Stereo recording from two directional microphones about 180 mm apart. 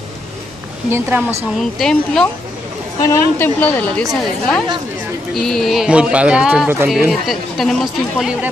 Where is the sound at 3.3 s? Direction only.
10° left (ahead or behind).